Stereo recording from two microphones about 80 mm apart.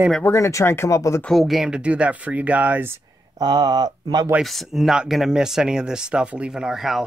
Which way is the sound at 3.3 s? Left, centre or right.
Right.